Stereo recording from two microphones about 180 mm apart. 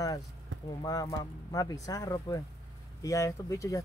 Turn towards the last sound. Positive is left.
turn(degrees=15)  # may be behind; listen again after turning